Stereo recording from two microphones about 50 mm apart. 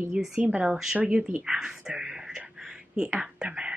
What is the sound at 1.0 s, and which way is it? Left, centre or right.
Speech, centre.